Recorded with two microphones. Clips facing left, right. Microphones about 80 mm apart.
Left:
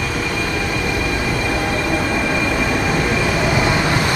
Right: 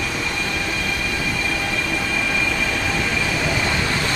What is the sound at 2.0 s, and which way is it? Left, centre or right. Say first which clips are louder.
Train: left 4 dB; left.